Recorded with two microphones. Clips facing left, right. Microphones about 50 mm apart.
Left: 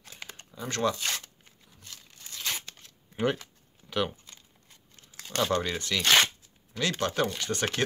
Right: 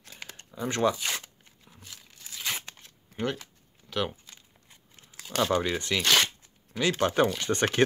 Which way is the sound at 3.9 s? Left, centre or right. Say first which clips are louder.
Left 1 dB; centre.